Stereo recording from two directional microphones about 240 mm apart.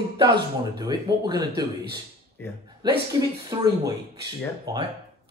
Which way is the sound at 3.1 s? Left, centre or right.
Centre.